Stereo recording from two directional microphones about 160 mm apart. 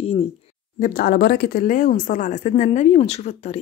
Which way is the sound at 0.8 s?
70° left (ahead or behind).